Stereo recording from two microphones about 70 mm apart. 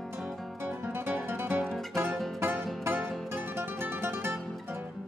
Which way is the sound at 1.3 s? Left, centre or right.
Right.